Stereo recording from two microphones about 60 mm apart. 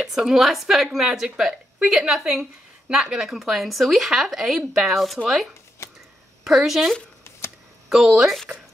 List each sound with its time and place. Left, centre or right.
0.0 s a woman's voice: centre
5.8 s a sound: left
6.4 s a woman's voice: centre
7.9 s a woman's voice: centre